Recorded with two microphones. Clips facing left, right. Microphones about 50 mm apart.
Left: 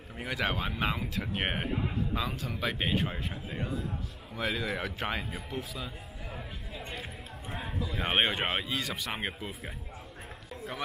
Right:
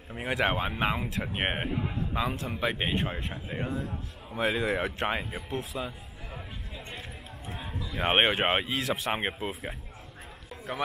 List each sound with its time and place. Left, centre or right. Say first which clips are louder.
0.1 s speech: right 4 dB; centre
6.3 s speech: right 1 dB; centre
7.0 s a sound: left 1 dB; centre
8.3 s speech: right 5 dB; centre